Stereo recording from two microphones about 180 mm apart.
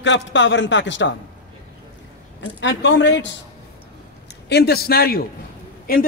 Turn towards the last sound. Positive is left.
turn(degrees=55)  # may be behind; listen again after turning